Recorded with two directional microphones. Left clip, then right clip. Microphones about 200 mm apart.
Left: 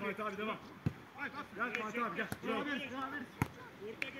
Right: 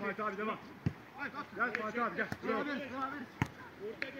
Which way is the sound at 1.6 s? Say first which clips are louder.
Right 3 dB; 75° left (ahead or behind).